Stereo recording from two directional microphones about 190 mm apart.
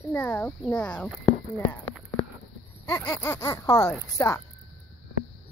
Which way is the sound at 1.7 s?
10° left (ahead or behind).